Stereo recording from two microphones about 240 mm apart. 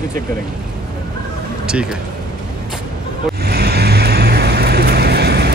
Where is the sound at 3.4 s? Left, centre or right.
Right.